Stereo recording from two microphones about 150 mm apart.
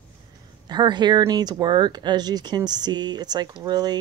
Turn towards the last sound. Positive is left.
turn(degrees=-25)  # may be behind; listen again after turning